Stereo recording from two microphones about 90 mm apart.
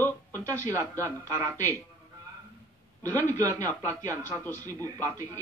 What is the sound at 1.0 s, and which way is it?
Speech, 30° right (ahead or behind).